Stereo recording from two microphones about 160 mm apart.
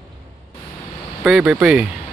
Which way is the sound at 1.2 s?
5° right (ahead or behind).